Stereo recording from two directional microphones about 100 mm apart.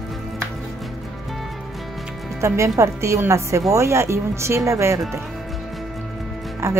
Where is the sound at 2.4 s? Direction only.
30° right (ahead or behind).